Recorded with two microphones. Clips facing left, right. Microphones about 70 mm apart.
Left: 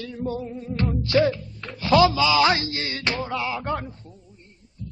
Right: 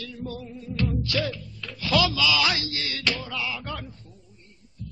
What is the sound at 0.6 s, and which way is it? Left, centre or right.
A man's voice, left.